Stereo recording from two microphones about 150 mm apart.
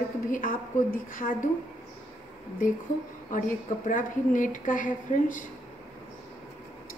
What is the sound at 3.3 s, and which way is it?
A woman's voice, 60° left (ahead or behind).